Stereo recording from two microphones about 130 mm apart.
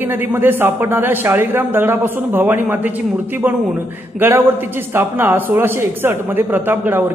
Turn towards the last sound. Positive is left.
turn(degrees=-15)  # may be behind; listen again after turning